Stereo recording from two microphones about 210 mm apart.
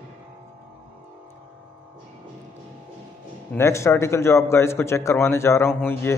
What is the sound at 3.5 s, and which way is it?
A man's voice, 15° left (ahead or behind).